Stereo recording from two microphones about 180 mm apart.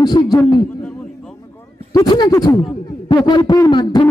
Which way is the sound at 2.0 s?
25° left (ahead or behind).